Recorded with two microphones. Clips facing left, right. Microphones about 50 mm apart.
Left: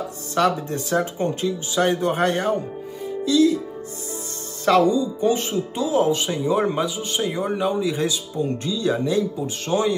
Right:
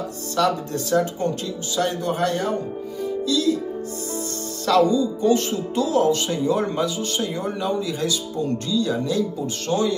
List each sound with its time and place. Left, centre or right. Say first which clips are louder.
0.4 s speech: left 1 dB; left
4.6 s speech: left 1 dB; left